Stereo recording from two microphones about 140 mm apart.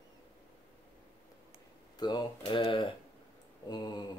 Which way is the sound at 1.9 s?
30° left (ahead or behind).